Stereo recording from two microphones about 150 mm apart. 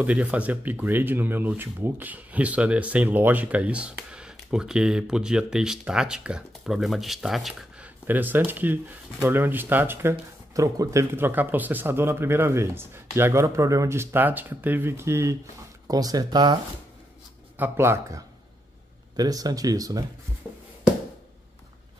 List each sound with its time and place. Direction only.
0.0 s speech: 10° right (ahead or behind)
8.1 s speech: 10° right (ahead or behind); by 16.5 s 30° right (ahead or behind)
17.6 s speech: 15° right (ahead or behind)